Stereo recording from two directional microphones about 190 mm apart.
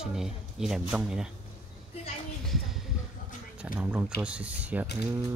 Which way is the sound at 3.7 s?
10° right (ahead or behind).